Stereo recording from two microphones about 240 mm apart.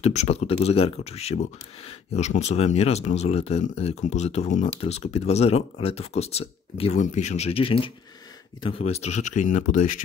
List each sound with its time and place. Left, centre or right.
0.0 s speech: left